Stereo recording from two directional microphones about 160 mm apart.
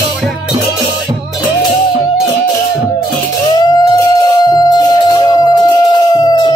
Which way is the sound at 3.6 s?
25° left (ahead or behind).